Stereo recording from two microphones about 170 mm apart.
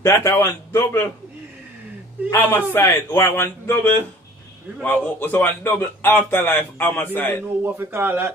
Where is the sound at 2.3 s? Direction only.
10° left (ahead or behind).